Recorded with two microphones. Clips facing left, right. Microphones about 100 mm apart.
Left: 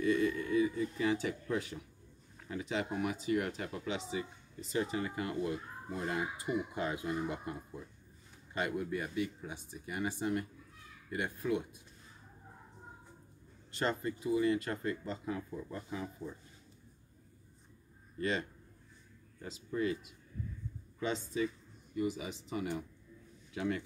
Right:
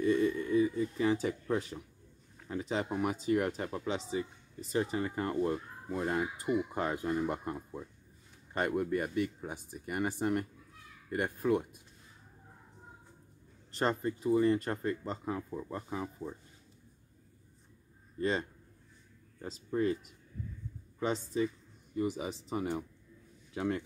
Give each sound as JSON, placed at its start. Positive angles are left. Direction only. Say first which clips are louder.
{"t": 0.0, "sound": "a sound", "louder": "right 2 dB", "side_deg": -30}
{"t": 2.4, "sound": "speech", "louder": "right 2 dB", "side_deg": -35}
{"t": 8.5, "sound": "speech", "louder": "right 4 dB", "side_deg": -50}
{"t": 13.7, "sound": "speech", "louder": "right 3 dB", "side_deg": -40}
{"t": 18.2, "sound": "speech", "louder": "right 3 dB", "side_deg": -30}